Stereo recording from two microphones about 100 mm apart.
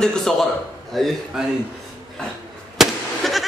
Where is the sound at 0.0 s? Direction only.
5° left (ahead or behind).